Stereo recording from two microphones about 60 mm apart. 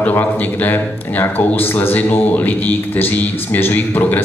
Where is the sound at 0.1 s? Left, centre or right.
Left.